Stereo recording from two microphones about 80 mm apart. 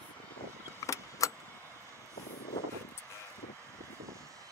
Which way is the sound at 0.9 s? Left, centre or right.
Left.